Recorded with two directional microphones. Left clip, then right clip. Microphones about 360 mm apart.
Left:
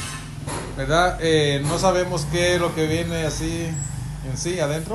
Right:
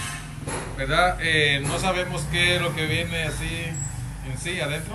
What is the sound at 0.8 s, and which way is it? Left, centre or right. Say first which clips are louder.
A man's voice: left 2 dB; centre.